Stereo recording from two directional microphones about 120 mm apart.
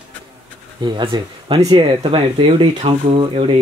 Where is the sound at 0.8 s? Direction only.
40° right (ahead or behind).